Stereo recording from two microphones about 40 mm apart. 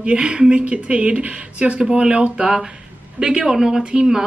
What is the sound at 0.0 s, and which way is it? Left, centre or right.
Speech, right.